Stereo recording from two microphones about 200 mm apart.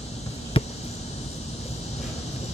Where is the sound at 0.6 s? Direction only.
25° left (ahead or behind).